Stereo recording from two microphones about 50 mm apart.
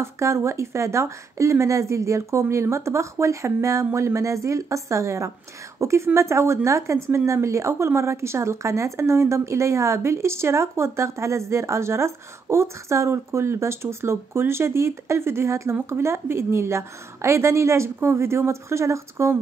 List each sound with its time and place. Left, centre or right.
0.0 s speech: right
2.5 s speech: right
5.8 s a woman's voice: right
7.1 s speech: right
15.9 s a woman's voice: right